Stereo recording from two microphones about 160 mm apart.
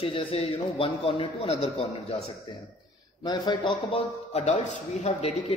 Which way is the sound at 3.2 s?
25° left (ahead or behind).